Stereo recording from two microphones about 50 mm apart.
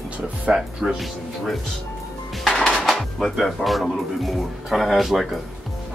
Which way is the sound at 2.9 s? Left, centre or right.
Centre.